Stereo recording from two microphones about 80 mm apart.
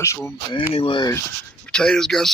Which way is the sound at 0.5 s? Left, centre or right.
Left.